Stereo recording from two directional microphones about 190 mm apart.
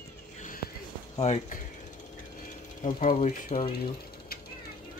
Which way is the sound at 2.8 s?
50° left (ahead or behind).